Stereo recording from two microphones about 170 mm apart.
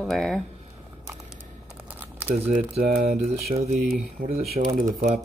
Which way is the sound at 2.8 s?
60° right (ahead or behind).